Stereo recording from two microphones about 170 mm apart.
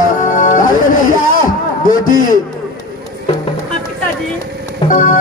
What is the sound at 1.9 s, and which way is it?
Speech, 50° left (ahead or behind).